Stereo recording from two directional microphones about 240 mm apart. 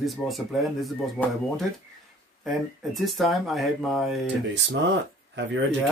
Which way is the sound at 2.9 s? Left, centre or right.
Centre.